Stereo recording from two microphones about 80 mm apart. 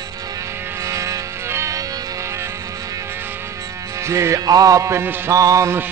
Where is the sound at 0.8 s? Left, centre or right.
Right.